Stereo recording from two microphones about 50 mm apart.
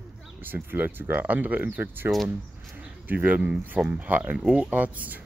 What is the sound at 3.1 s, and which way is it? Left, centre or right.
Speech, right.